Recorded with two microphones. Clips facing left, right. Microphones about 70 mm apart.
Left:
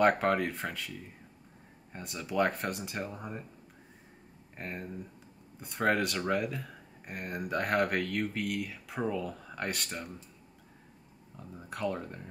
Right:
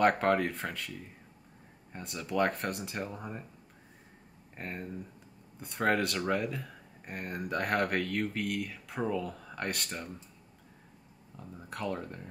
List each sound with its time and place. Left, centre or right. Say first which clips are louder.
0.0 s speech: even; centre
4.6 s speech: even; centre
11.3 s speech: even; centre